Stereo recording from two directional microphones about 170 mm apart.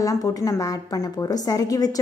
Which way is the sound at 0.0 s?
20° left (ahead or behind).